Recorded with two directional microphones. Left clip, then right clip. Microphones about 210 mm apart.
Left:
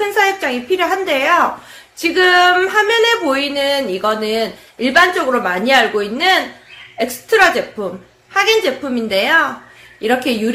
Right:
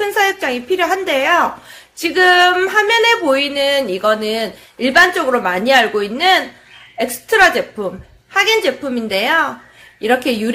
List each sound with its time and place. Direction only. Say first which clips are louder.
0.0 s a woman's voice: left 1 dB; 30° right (ahead or behind)
2.0 s a sound: even; 30° right (ahead or behind)
10.0 s a woman's voice: right 1 dB; 30° right (ahead or behind)